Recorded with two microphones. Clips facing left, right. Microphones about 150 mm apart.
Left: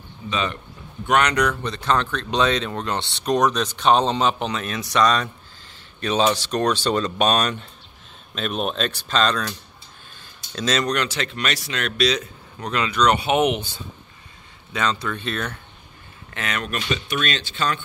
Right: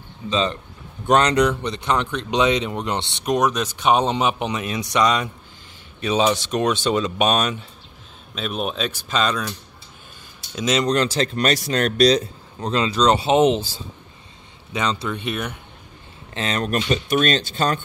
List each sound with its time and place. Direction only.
0.3 s speech: 25° right (ahead or behind)
3.3 s speech: 10° right (ahead or behind)
6.9 s speech: 5° right (ahead or behind)
10.9 s speech: 35° right (ahead or behind)
12.5 s speech: 25° right (ahead or behind)
14.7 s speech: 20° right (ahead or behind)
16.3 s speech: 30° right (ahead or behind)